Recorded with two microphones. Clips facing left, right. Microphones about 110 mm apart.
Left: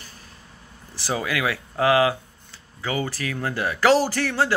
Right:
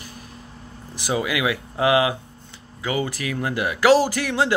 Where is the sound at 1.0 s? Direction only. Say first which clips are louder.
Right 2 dB; 15° right (ahead or behind).